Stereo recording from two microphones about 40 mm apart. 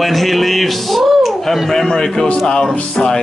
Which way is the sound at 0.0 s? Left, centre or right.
Centre.